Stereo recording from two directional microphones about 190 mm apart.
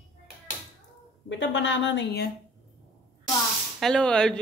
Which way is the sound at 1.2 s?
70° left (ahead or behind).